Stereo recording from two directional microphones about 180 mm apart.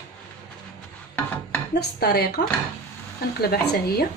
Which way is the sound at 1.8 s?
60° left (ahead or behind).